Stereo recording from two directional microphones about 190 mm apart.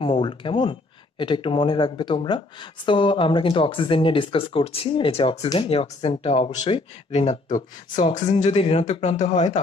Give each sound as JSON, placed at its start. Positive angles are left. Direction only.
{"t": 0.0, "sound": "speech", "side_deg": 25}